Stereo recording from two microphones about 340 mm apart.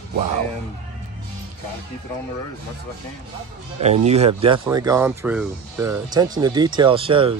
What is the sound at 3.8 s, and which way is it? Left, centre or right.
Speech, centre.